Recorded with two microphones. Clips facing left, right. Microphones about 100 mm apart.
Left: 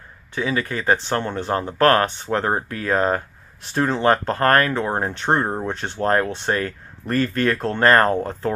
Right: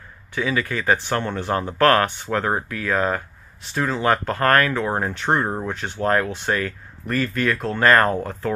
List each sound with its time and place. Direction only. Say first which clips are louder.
0.3 s speech: even; 20° left (ahead or behind)